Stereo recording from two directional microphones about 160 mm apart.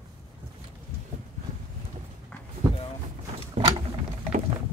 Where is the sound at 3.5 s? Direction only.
35° right (ahead or behind).